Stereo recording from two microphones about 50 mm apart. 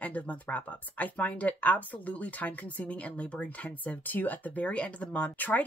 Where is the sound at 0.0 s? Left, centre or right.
Left.